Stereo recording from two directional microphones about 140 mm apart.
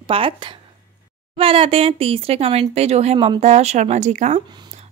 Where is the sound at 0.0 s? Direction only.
40° right (ahead or behind).